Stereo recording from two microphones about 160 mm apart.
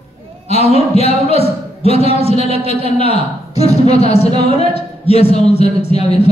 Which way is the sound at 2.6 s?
40° left (ahead or behind).